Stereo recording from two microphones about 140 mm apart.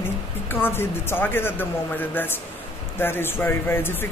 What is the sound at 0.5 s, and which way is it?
Speech, 15° left (ahead or behind).